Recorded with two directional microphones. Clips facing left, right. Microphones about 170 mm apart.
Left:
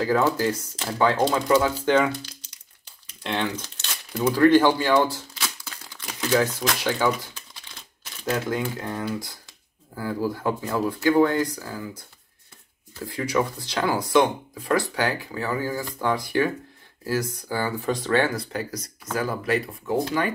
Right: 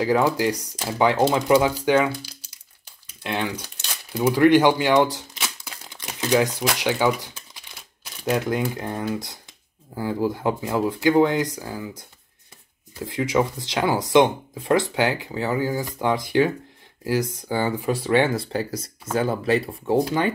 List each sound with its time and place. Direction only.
0.0 s speech: 15° right (ahead or behind)
5.9 s crumpling: 15° right (ahead or behind)
8.2 s speech: 15° right (ahead or behind)
17.8 s speech: 10° right (ahead or behind); by 20.0 s 30° right (ahead or behind)